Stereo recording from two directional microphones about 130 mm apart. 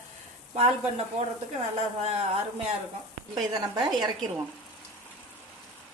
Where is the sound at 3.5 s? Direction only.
30° right (ahead or behind).